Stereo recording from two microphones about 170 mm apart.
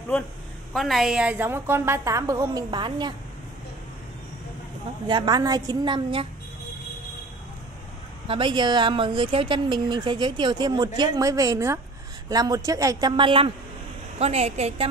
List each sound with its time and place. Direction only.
0.7 s a woman's voice: centre (ahead or behind); by 3.2 s 25° right (ahead or behind)
5.0 s a woman's voice: 25° right (ahead or behind)
8.3 s a woman's voice: 30° right (ahead or behind)